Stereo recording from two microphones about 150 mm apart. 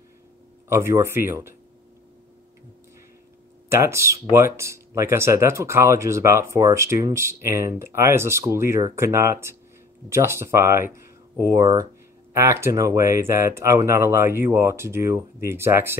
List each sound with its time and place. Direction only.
0.7 s speech: 20° right (ahead or behind)
3.6 s speech: 15° right (ahead or behind)